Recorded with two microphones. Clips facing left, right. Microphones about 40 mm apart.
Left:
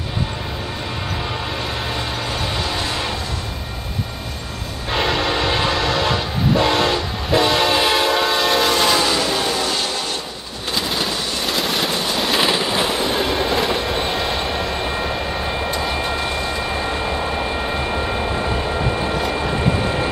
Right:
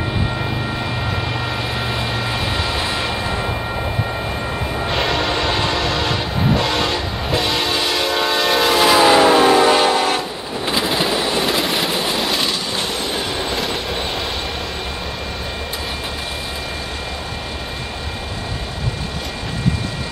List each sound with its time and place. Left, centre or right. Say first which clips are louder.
4.9 s train: left 2 dB; centre
8.1 s train: even; centre
9.0 s train: right 8 dB; right
11.0 s vehicle: right 4 dB; centre
12.7 s train: left 3 dB; centre